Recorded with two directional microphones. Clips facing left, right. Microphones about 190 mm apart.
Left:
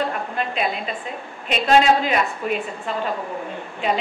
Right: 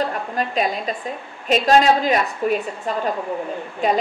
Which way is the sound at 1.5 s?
40° right (ahead or behind).